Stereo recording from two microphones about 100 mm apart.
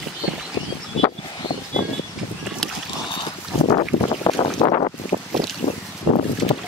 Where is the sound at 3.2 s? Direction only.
55° left (ahead or behind).